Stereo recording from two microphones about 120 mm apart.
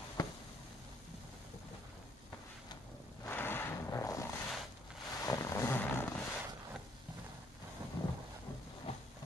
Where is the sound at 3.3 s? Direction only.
15° left (ahead or behind).